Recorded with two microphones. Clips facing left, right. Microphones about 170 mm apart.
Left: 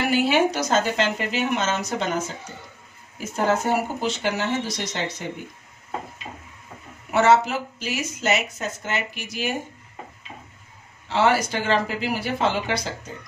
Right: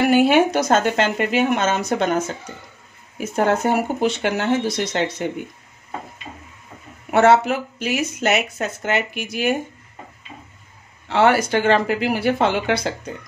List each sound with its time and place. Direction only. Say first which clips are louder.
0.1 s speech: right 3 dB; 50° right (ahead or behind)
3.6 s speech: right 4 dB; 60° right (ahead or behind)
7.1 s speech: right 3 dB; 55° right (ahead or behind)
11.1 s speech: right 4 dB; 60° right (ahead or behind)